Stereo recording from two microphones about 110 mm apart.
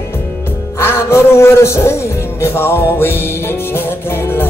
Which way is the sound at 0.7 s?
25° left (ahead or behind).